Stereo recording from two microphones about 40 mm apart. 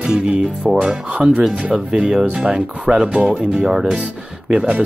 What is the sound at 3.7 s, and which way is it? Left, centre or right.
Speech, right.